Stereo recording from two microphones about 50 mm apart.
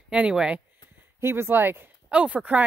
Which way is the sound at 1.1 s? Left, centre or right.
Right.